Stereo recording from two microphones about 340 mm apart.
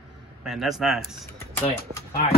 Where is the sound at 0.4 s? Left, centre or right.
Centre.